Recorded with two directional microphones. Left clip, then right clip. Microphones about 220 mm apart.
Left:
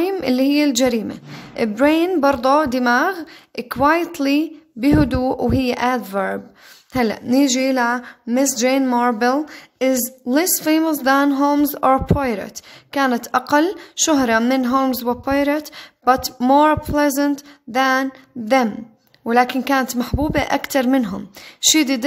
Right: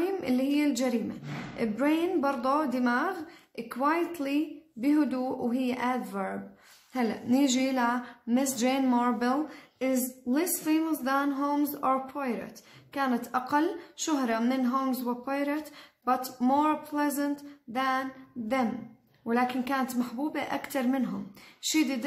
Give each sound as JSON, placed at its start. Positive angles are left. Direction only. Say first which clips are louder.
{"t": 0.0, "sound": "a woman's voice", "louder": "left 11 dB", "side_deg": 40}
{"t": 19.2, "sound": "speech", "louder": "left 12 dB", "side_deg": 45}